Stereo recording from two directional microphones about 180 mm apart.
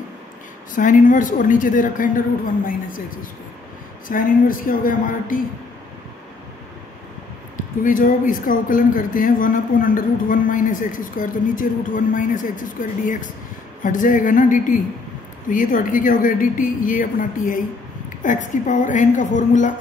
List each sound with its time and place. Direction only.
0.7 s speech: 45° left (ahead or behind)
7.8 s speech: 50° left (ahead or behind)